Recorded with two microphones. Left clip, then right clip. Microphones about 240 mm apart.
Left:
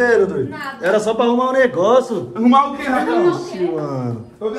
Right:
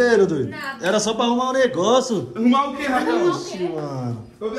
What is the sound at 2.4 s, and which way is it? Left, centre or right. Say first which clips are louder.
Speech: left 6 dB; centre.